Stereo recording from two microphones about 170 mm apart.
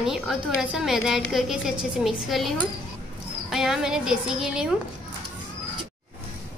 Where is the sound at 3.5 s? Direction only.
Centre (ahead or behind).